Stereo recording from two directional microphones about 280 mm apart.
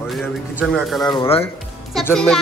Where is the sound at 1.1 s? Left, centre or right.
Centre.